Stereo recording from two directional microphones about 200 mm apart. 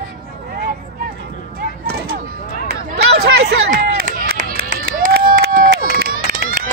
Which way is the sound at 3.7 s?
40° right (ahead or behind).